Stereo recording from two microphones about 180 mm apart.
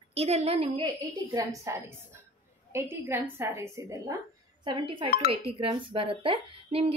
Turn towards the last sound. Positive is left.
turn(degrees=-30)  # may be behind; listen again after turning